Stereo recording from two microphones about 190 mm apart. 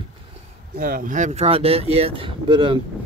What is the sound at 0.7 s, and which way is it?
Speech, 50° right (ahead or behind).